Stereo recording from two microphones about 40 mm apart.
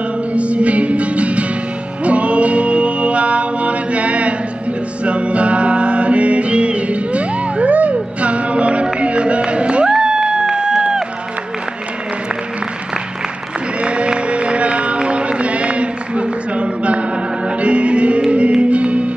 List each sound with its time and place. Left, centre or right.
0.3 s music: right
10.8 s run: centre
13.7 s music: right